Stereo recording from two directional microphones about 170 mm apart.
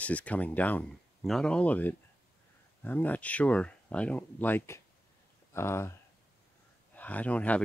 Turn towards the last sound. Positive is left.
turn(degrees=10)  # may be behind; listen again after turning